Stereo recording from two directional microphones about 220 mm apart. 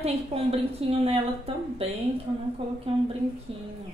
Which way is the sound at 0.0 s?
25° right (ahead or behind).